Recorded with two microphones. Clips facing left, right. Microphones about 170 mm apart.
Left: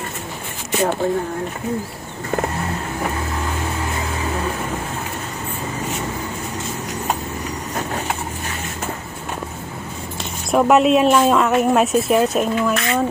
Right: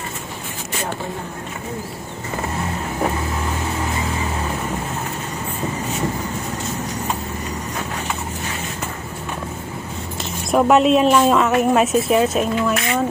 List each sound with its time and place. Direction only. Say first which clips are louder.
10.5 s speech: even; centre (ahead or behind)